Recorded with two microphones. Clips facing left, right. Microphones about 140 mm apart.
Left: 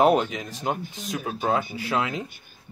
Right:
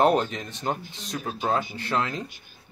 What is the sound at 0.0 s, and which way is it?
A man's voice, 5° left (ahead or behind).